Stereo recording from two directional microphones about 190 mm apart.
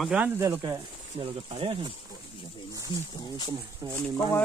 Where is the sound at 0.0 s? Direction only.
5° right (ahead or behind); by 1.9 s 30° right (ahead or behind).